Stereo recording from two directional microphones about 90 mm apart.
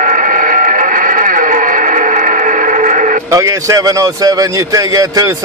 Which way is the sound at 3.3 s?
35° right (ahead or behind).